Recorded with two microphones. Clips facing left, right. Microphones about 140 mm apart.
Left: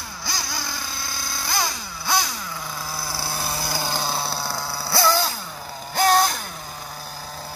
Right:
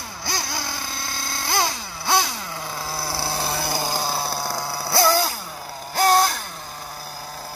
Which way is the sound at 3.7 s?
10° right (ahead or behind).